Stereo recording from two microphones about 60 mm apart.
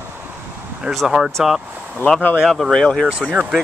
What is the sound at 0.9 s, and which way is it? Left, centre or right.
Speech, centre.